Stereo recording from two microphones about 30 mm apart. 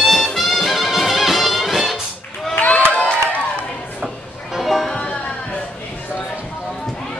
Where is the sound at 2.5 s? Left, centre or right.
Left.